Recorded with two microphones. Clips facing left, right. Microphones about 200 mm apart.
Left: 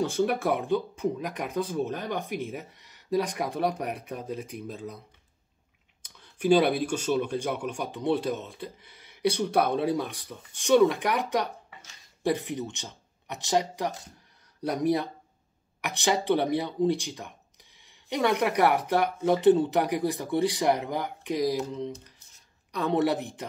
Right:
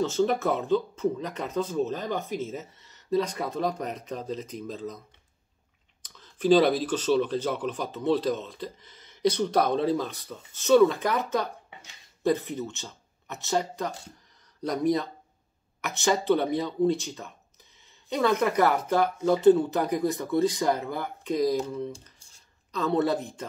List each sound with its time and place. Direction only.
0.0 s speech: 10° left (ahead or behind)
6.3 s speech: 10° left (ahead or behind)
22.7 s speech: 15° left (ahead or behind)